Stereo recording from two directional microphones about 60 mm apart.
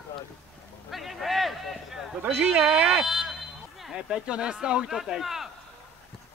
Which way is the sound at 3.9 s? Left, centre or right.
Centre.